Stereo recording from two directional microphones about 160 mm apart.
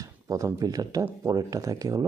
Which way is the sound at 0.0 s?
20° right (ahead or behind).